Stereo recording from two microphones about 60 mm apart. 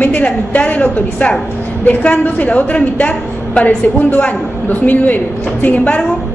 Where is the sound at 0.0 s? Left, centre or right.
Left.